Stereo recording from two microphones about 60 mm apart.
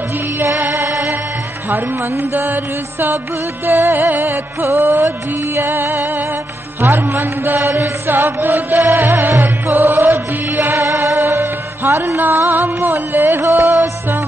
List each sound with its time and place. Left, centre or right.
0.6 s music: right
0.8 s music: right
1.7 s chant: right
9.4 s music: right
12.2 s chant: right